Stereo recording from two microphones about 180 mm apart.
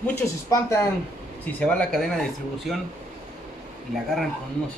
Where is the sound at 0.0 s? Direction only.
15° left (ahead or behind).